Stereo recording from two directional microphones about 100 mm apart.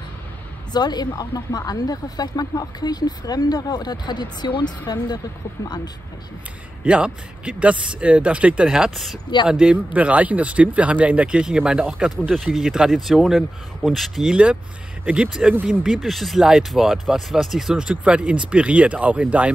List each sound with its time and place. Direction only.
0.7 s speech: 45° left (ahead or behind)
6.8 s speech: 10° right (ahead or behind)
12.2 s speech: 5° left (ahead or behind); by 19.5 s 15° right (ahead or behind)